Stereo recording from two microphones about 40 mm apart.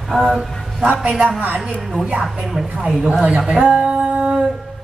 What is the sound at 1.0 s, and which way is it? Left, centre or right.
Speech, right.